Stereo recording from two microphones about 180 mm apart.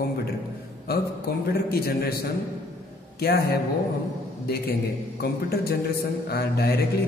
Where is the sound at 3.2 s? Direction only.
65° left (ahead or behind).